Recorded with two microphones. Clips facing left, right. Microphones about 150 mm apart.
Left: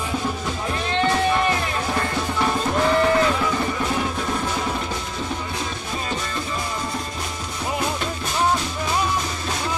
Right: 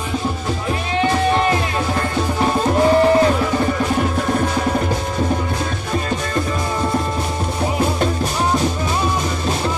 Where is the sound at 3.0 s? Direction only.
30° right (ahead or behind).